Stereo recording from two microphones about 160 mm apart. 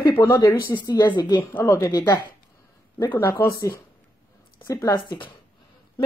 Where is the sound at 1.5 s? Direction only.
15° left (ahead or behind).